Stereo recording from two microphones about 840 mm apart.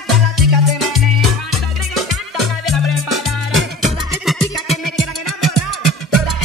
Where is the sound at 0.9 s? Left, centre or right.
Right.